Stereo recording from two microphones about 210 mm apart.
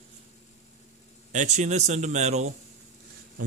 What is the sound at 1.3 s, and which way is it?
Speech, 35° right (ahead or behind).